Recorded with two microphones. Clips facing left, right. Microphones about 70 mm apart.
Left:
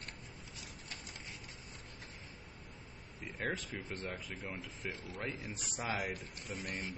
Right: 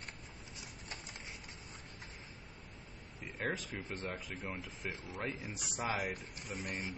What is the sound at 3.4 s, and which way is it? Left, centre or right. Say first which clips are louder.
Speech: right 1 dB; centre.